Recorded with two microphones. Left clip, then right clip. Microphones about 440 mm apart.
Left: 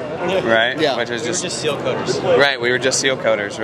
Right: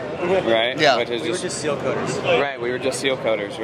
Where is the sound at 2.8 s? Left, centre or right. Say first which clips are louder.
Left 2 dB; left.